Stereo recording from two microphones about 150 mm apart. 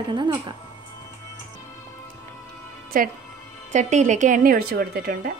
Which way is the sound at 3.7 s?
50° right (ahead or behind).